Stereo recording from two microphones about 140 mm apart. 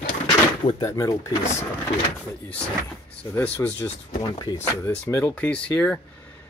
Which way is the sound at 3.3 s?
10° left (ahead or behind).